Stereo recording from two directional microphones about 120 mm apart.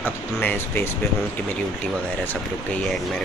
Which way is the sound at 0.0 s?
15° left (ahead or behind).